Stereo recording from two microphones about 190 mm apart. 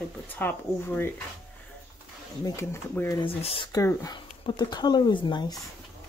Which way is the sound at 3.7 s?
20° left (ahead or behind).